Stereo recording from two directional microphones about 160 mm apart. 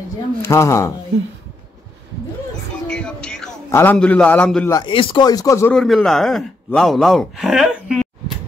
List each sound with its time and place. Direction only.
0.4 s a man's voice: 20° left (ahead or behind)
2.9 s music: 5° left (ahead or behind)
3.7 s a man's voice: 10° left (ahead or behind)
4.6 s speech: 25° left (ahead or behind)
5.7 s speech: 5° left (ahead or behind)